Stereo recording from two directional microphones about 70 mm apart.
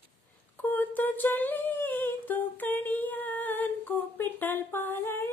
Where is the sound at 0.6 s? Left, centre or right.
Left.